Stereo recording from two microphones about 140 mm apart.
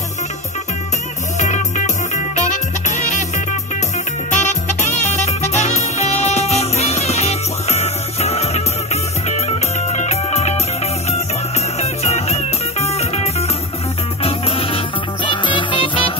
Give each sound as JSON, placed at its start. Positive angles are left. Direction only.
{"t": 3.0, "sound": "music", "side_deg": 60}
{"t": 4.3, "sound": "music", "side_deg": 60}
{"t": 9.9, "sound": "music", "side_deg": 50}
{"t": 11.8, "sound": "music", "side_deg": 50}